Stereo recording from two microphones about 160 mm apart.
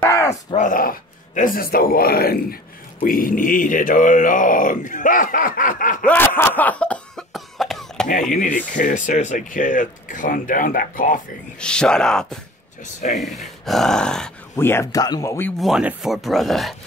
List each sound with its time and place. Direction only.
0.0 s groan: 20° left (ahead or behind)
0.6 s speech: 60° left (ahead or behind)
6.0 s cough: 15° left (ahead or behind)
8.3 s speech: 55° left (ahead or behind)
11.6 s speech: 5° left (ahead or behind)
12.8 s speech: 50° left (ahead or behind)
13.2 s speech: centre (ahead or behind)
14.5 s speech: 15° left (ahead or behind)
15.6 s speech: 5° right (ahead or behind)